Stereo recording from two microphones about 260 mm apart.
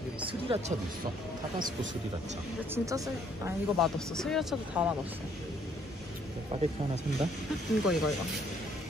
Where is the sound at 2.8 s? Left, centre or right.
Centre.